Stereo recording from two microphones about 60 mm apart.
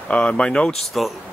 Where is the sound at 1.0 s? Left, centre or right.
Centre.